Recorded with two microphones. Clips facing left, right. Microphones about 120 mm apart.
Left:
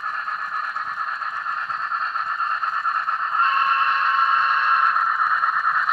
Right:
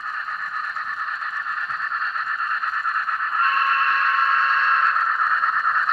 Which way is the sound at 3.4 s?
20° left (ahead or behind).